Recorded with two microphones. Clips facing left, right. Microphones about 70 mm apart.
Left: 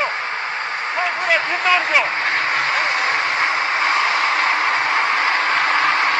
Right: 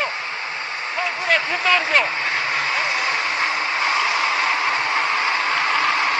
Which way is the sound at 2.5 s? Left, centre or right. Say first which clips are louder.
Left 3 dB; left.